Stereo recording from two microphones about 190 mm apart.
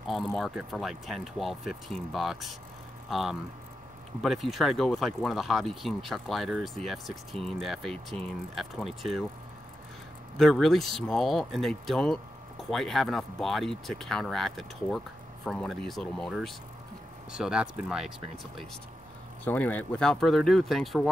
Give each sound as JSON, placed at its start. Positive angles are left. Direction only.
{"t": 0.0, "sound": "speech", "side_deg": 0}
{"t": 10.3, "sound": "speech", "side_deg": 0}
{"t": 19.4, "sound": "speech", "side_deg": 10}